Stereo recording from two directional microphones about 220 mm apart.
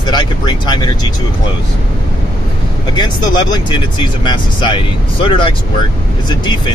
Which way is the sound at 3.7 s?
20° left (ahead or behind).